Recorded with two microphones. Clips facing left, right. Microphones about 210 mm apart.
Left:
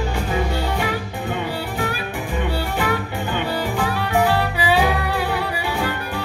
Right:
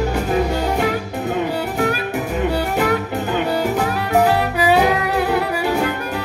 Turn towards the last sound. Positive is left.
turn(degrees=-45)  # may be behind; listen again after turning